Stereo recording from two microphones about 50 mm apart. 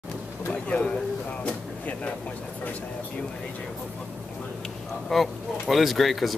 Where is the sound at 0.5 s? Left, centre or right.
Left.